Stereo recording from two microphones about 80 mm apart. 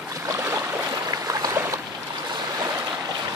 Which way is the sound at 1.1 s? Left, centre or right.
Right.